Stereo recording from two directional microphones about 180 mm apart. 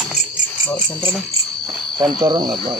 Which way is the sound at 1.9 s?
25° right (ahead or behind).